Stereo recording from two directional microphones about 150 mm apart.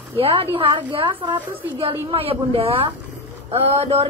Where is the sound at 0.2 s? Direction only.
40° right (ahead or behind).